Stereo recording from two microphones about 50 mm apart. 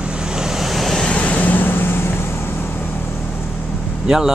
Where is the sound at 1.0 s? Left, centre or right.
Left.